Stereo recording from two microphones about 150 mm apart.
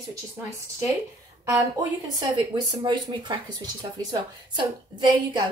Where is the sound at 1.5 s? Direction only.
25° right (ahead or behind).